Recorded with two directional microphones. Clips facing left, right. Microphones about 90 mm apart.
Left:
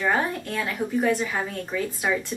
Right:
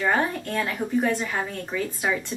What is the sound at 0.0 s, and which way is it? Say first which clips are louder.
Speech: right 1 dB; centre (ahead or behind).